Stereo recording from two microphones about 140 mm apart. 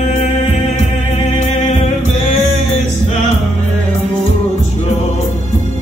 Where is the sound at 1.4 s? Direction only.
60° left (ahead or behind).